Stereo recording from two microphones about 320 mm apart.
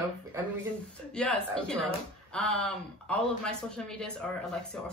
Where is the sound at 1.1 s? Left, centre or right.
Centre.